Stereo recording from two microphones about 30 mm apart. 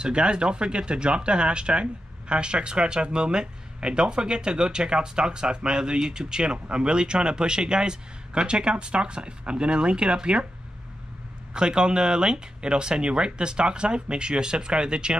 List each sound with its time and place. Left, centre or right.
0.0 s speech: right
11.5 s speech: right